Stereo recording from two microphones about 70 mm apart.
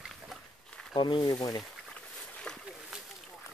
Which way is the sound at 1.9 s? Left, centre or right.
Centre.